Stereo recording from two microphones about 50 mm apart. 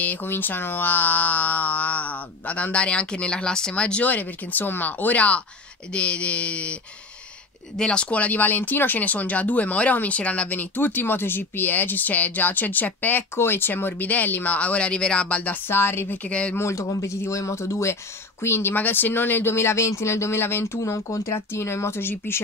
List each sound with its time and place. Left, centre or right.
0.0 s speech: left
0.3 s speech: left; by 4.0 s centre
4.0 s speech: left
13.4 s speech: left
14.0 s speech: left
15.6 s speech: left
16.1 s speech: left
16.5 s speech: left
18.4 s speech: left
18.8 s speech: left
21.5 s speech: left